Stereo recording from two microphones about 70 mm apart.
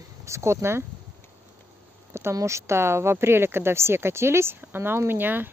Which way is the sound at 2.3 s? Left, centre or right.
Right.